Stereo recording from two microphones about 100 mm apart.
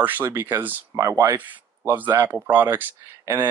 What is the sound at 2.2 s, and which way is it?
Speech, 20° right (ahead or behind).